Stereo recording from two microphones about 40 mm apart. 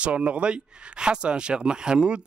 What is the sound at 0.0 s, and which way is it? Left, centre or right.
Speech, right.